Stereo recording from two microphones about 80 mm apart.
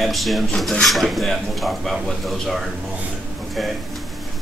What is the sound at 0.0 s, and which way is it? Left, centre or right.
Speech, centre.